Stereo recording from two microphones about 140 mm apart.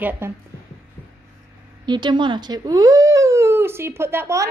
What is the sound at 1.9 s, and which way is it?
Speech, 35° right (ahead or behind).